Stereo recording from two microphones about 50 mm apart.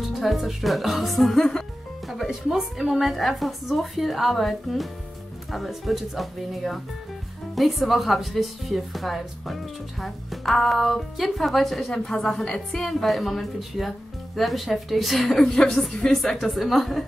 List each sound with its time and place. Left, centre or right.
0.0 s a woman's voice: centre
2.2 s a woman's voice: centre
15.5 s a woman's voice: centre